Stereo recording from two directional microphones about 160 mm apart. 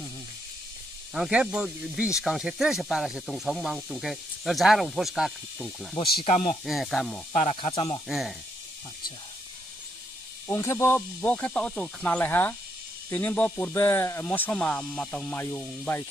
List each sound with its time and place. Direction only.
1.1 s speech: 5° right (ahead or behind)
6.2 s speech: 50° left (ahead or behind)
6.6 s speech: centre (ahead or behind)
7.5 s speech: 35° left (ahead or behind)
8.1 s speech: centre (ahead or behind)
10.5 s speech: 15° left (ahead or behind)